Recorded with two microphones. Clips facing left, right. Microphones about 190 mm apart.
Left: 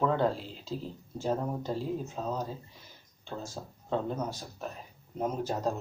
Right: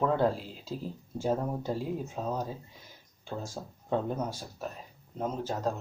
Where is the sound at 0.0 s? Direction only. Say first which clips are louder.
Right 1 dB; 5° right (ahead or behind).